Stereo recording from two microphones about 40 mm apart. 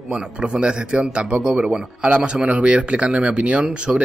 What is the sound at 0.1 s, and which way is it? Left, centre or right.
A man's voice, right.